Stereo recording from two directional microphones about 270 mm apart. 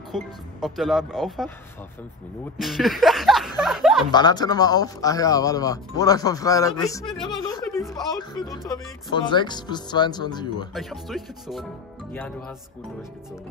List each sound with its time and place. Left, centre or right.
0.1 s speech: centre
2.6 s speech: centre
4.1 s speech: centre
7.2 s music: centre
7.9 s speech: centre
10.7 s speech: centre